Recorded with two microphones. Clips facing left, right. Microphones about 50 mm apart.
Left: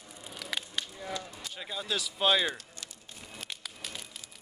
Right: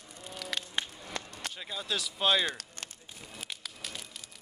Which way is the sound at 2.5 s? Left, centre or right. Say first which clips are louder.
Even; right.